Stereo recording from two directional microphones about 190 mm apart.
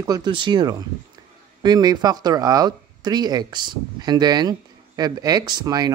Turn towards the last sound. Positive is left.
turn(degrees=-20)  # may be behind; listen again after turning